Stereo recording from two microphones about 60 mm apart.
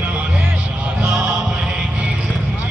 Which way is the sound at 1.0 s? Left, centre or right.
Centre.